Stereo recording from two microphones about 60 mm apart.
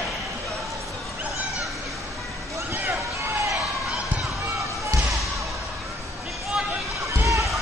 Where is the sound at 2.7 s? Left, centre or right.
Right.